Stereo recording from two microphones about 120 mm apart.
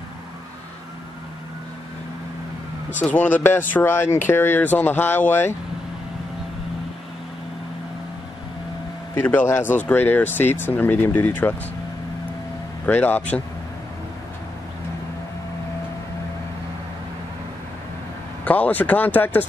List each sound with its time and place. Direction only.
3.0 s speech: 15° left (ahead or behind)
9.2 s speech: 15° left (ahead or behind)
12.8 s speech: 15° left (ahead or behind)
18.4 s speech: 15° left (ahead or behind)